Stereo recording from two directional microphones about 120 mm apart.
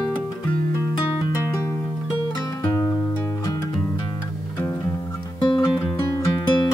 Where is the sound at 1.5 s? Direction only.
25° left (ahead or behind).